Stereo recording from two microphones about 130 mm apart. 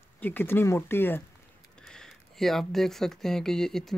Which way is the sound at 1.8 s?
5° left (ahead or behind).